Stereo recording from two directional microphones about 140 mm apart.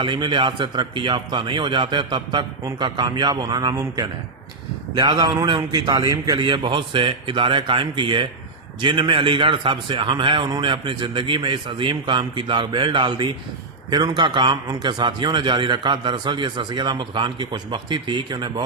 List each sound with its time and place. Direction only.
0.0 s a man's voice: 35° right (ahead or behind)